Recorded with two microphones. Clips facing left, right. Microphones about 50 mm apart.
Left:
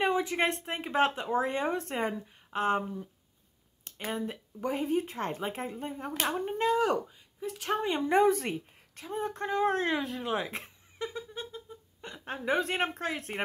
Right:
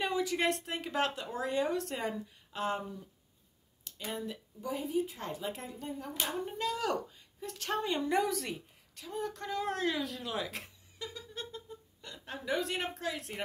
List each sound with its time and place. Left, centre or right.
0.0 s speech: left
4.6 s speech: left
7.1 s speech: centre; by 13.4 s left